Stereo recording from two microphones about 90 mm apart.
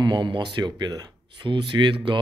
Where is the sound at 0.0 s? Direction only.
60° right (ahead or behind).